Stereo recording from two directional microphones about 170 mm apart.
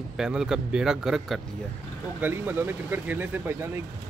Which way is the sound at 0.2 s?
5° right (ahead or behind).